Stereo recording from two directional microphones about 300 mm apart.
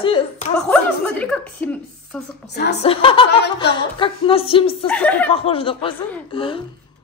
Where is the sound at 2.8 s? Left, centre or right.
Centre.